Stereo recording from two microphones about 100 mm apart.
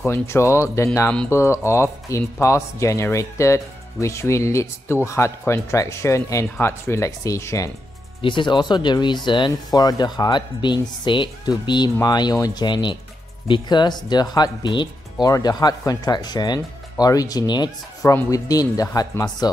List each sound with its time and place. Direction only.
0.0 s speech: 25° left (ahead or behind)
8.2 s speech: 55° left (ahead or behind)
15.2 s speech: 40° left (ahead or behind)